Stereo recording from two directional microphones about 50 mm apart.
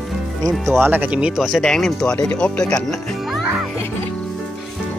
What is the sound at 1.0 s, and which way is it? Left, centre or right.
Speech, right.